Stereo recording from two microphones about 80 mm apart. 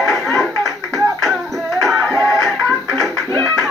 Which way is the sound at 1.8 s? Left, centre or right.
Centre.